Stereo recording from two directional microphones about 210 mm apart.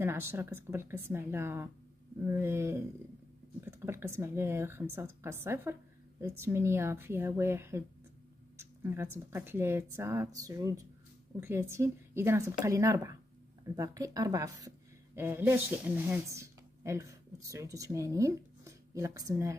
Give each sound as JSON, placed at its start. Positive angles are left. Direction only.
{"t": 0.0, "sound": "a woman's voice", "side_deg": -10}